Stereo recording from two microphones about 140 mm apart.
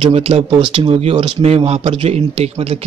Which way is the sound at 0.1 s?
45° right (ahead or behind).